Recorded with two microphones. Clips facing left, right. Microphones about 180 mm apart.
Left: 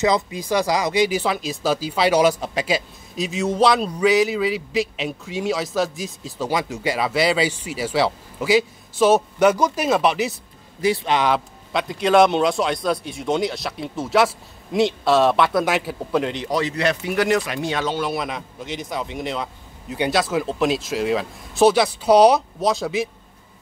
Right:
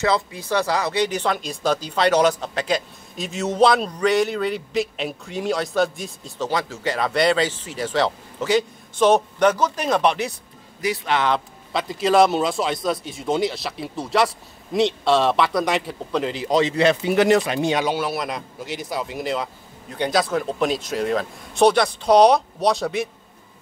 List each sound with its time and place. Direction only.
0.0 s speech: 15° left (ahead or behind)
10.8 s speech: 25° left (ahead or behind)
11.1 s speech: 10° left (ahead or behind)
11.7 s speech: centre (ahead or behind)
16.4 s speech: 25° right (ahead or behind); by 23.0 s centre (ahead or behind)